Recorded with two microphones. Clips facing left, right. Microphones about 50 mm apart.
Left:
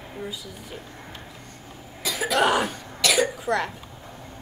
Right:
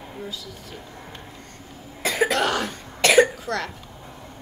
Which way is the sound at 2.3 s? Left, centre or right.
Centre.